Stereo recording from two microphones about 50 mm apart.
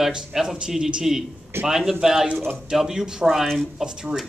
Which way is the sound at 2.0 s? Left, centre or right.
Centre.